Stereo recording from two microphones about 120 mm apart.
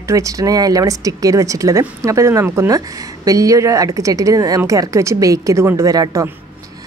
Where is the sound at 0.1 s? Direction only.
30° right (ahead or behind).